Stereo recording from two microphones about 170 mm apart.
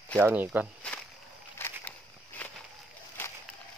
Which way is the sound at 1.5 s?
15° left (ahead or behind).